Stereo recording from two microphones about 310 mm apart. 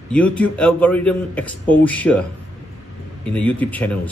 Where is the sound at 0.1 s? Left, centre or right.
Centre.